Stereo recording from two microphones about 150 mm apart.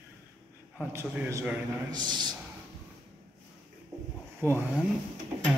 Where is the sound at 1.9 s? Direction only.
30° right (ahead or behind).